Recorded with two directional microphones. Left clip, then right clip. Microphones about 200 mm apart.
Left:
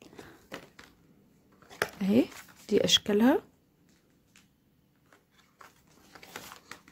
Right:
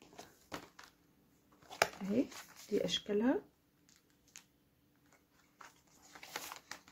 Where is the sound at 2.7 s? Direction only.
45° left (ahead or behind).